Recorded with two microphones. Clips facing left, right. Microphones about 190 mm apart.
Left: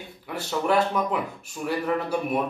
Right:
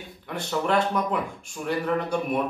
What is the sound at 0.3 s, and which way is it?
Speech, 5° left (ahead or behind).